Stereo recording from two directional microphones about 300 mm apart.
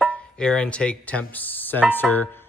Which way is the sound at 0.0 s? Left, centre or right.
Centre.